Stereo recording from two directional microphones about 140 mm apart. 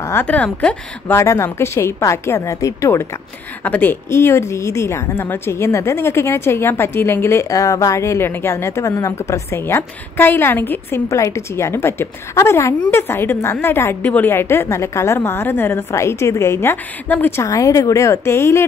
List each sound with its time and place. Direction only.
0.0 s a woman's voice: 15° left (ahead or behind)